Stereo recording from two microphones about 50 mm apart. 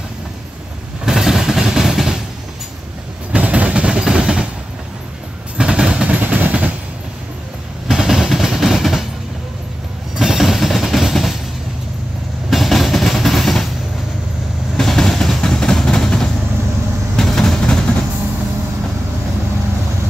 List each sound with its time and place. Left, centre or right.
1.0 s vehicle: centre
3.3 s train: right
4.0 s a sound: centre
5.6 s vehicle: centre
6.0 s vehicle: right
7.9 s machine gun: centre
10.1 s music: centre
12.4 s train: centre
14.8 s vehicle: centre